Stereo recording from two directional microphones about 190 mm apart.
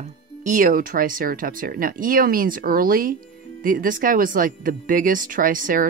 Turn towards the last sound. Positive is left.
turn(degrees=-45)  # may be behind; listen again after turning